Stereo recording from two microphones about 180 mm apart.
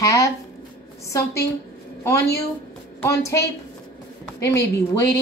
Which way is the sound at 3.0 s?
15° left (ahead or behind).